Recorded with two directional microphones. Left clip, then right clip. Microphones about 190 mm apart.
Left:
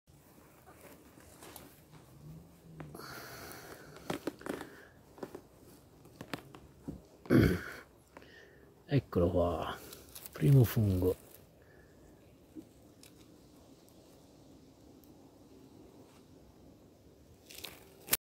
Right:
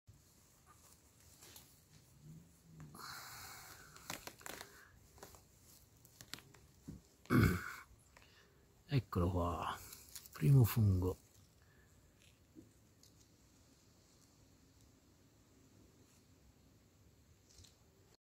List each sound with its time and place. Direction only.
2.9 s wheeze: 40° right (ahead or behind)
4.1 s crumpling: 5° left (ahead or behind)
5.2 s a sound: 5° left (ahead or behind)
7.2 s throat clearing: 40° right (ahead or behind)
8.8 s a sound: 35° right (ahead or behind)
10.3 s speech: 35° right (ahead or behind)